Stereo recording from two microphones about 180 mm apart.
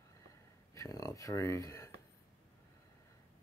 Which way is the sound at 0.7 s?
20° left (ahead or behind).